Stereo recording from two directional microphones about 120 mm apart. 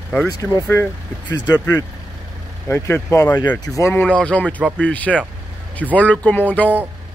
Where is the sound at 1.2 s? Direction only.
35° left (ahead or behind).